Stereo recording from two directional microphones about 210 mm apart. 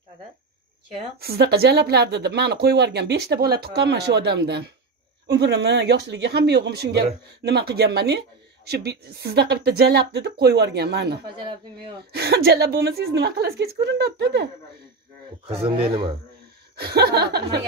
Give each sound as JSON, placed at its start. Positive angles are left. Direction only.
{"t": 1.2, "sound": "speech", "side_deg": -50}
{"t": 15.4, "sound": "speech", "side_deg": -30}
{"t": 16.7, "sound": "speech", "side_deg": -50}